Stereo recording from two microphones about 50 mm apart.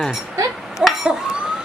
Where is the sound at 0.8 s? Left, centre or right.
Centre.